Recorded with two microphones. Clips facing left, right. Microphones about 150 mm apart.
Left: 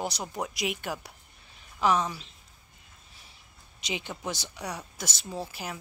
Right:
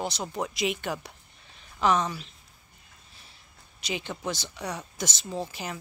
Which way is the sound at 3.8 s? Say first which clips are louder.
Right 2 dB; 15° left (ahead or behind).